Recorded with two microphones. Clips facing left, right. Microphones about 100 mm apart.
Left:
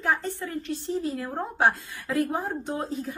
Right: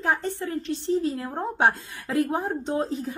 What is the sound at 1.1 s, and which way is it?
A woman's voice, 20° right (ahead or behind).